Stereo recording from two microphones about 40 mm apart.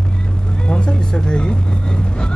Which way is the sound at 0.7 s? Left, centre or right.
Left.